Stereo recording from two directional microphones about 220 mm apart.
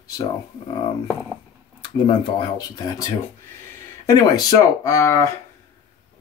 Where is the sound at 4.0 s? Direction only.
15° left (ahead or behind).